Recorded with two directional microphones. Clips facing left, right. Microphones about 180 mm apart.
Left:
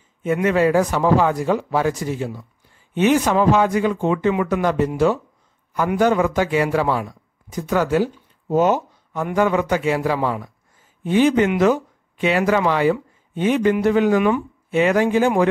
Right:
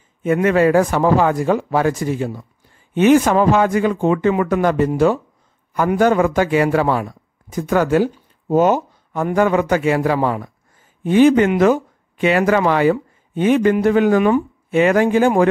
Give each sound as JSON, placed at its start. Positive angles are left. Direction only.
{"t": 0.2, "sound": "speech", "side_deg": -55}